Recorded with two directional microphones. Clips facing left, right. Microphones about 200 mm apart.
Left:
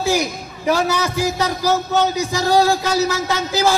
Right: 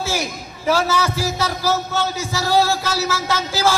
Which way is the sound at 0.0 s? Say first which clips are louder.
Left 5 dB; 15° left (ahead or behind).